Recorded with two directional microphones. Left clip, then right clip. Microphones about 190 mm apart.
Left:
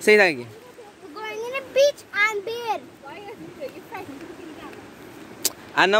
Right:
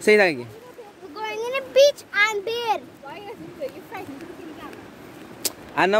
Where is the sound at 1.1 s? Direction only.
10° right (ahead or behind).